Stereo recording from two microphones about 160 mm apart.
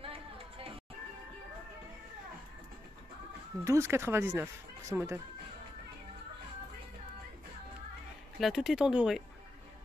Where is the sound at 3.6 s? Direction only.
15° right (ahead or behind).